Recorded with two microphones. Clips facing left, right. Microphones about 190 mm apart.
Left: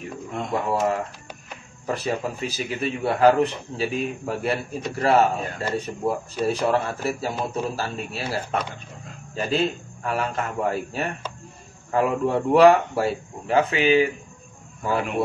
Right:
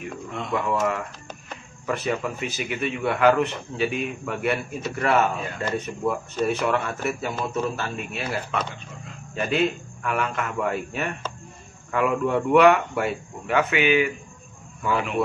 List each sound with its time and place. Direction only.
0.3 s a man's voice: 45° left (ahead or behind)